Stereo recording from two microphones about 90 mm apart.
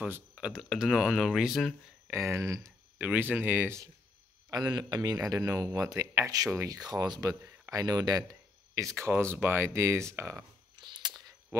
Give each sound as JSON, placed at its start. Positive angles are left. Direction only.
{"t": 0.0, "sound": "speech", "side_deg": -10}
{"t": 0.6, "sound": "speech", "side_deg": 0}
{"t": 2.0, "sound": "speech", "side_deg": -30}
{"t": 3.0, "sound": "speech", "side_deg": -20}
{"t": 4.5, "sound": "speech", "side_deg": -50}
{"t": 10.8, "sound": "a sound", "side_deg": -55}